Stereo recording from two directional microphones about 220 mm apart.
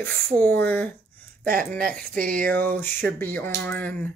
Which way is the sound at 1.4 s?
40° right (ahead or behind).